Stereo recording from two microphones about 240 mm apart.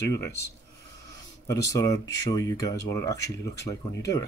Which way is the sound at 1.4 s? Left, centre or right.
Centre.